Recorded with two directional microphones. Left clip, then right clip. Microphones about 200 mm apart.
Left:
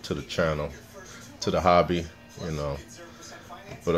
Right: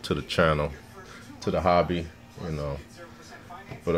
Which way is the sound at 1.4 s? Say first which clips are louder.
Left 2 dB; 10° left (ahead or behind).